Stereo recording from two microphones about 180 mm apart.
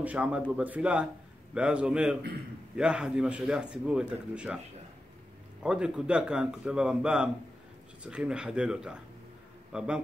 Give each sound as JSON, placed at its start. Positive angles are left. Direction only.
{"t": 0.0, "sound": "speech", "side_deg": -5}
{"t": 5.6, "sound": "a man's voice", "side_deg": -5}